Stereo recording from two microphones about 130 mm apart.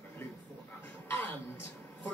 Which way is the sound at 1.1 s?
15° left (ahead or behind).